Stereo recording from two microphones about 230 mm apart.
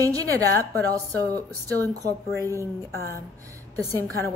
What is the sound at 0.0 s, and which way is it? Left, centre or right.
Speech, centre.